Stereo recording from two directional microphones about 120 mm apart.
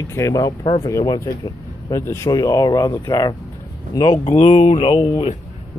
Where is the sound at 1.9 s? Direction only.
25° left (ahead or behind).